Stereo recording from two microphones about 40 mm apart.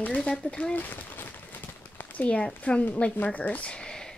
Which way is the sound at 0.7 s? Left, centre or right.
Left.